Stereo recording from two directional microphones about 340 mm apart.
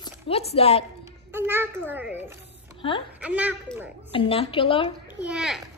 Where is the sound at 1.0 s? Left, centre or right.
Centre.